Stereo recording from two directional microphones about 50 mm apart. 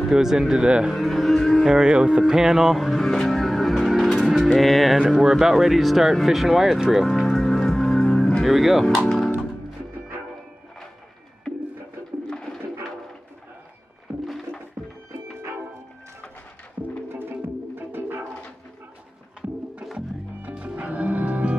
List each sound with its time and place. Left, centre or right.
0.1 s speech: centre
0.9 s speech: centre
1.6 s speech: centre
7.2 s music: centre
8.5 s speech: centre
12.3 s bird: centre
14.1 s a sound: right
17.1 s music: right
20.7 s music: right